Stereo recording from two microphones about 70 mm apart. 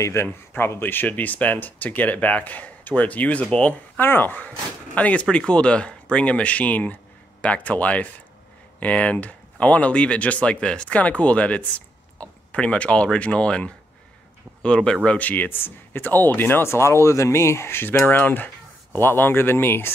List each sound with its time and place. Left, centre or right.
0.0 s speech: left; by 4.0 s centre
4.0 s speech: left